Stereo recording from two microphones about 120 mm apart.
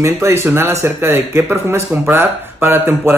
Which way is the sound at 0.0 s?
20° right (ahead or behind).